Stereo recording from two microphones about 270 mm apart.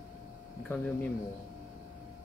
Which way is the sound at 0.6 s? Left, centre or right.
Centre.